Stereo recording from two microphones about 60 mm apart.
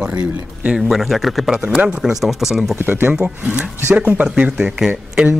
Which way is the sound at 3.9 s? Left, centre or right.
Right.